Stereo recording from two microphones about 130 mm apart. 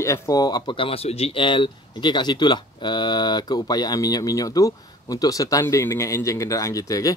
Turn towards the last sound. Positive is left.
turn(degrees=25)  # may be behind; listen again after turning